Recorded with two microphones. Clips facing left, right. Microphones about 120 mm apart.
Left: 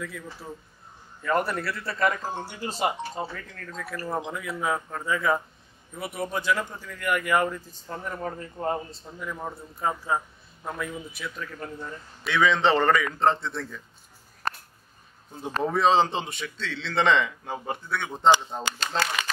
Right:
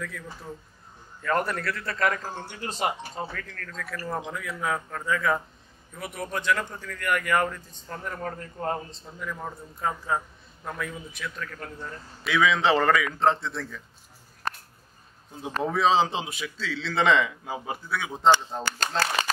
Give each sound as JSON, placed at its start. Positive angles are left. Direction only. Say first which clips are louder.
{"t": 0.0, "sound": "a man's voice", "louder": "left 1 dB", "side_deg": 5}
{"t": 12.2, "sound": "a man's voice", "louder": "even", "side_deg": 0}
{"t": 15.6, "sound": "a man's voice", "louder": "left 1 dB", "side_deg": 0}
{"t": 18.8, "sound": "speech", "louder": "right 2 dB", "side_deg": -40}